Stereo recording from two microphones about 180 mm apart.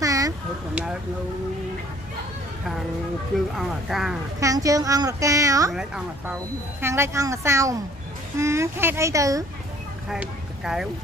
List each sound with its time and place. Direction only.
0.0 s a sound: 20° right (ahead or behind)
3.5 s speech: centre (ahead or behind)
4.4 s a woman's voice: 20° right (ahead or behind)
5.7 s speech: 5° right (ahead or behind)
6.8 s speech: 15° right (ahead or behind)
10.0 s speech: 5° right (ahead or behind)